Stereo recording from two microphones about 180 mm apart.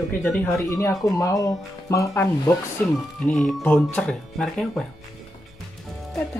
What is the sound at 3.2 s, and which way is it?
Speech, 5° left (ahead or behind).